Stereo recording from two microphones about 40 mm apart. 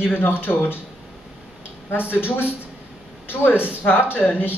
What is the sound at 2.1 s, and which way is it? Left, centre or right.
Speech, left.